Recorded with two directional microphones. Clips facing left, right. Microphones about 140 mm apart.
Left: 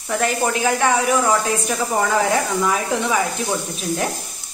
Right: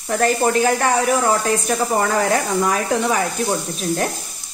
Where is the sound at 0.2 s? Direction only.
40° right (ahead or behind).